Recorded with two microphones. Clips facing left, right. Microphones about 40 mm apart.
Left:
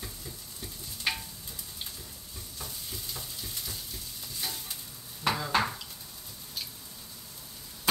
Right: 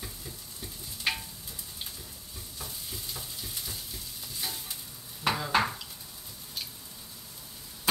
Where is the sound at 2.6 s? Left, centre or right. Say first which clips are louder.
Even; centre.